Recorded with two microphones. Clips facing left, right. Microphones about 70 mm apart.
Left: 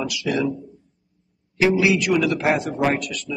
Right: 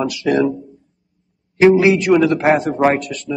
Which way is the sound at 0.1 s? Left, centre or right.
Right.